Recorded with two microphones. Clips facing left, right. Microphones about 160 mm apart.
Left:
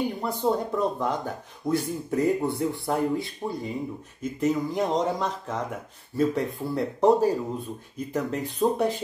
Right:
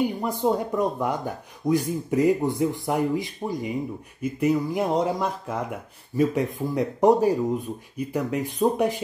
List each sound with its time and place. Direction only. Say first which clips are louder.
0.2 s speech: right 2 dB; 15° right (ahead or behind)